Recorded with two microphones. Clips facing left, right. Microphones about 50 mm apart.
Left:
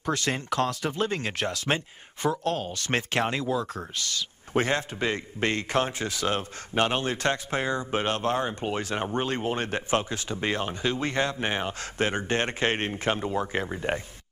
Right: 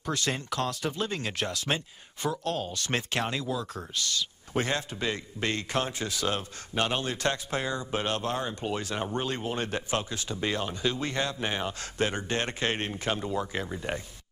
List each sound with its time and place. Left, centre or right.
0.0 s a man's voice: left